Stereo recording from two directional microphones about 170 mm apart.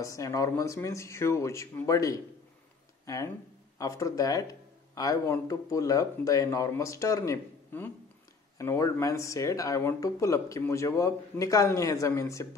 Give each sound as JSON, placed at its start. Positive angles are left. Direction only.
{"t": 0.0, "sound": "speech", "side_deg": 20}